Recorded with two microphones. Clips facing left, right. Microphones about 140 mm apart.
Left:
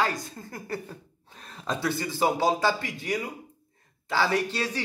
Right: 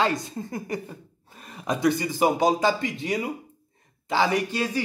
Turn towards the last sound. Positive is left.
turn(degrees=-10)  # may be behind; listen again after turning